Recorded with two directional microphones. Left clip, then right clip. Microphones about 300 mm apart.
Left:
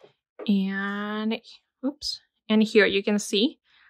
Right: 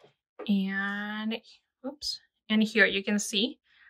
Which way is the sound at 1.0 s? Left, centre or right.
Centre.